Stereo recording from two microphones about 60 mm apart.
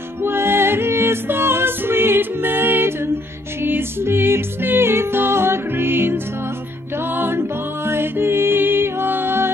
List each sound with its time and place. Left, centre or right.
0.2 s music: right
7.2 s music: right